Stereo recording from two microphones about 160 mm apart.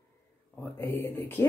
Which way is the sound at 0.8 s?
15° left (ahead or behind).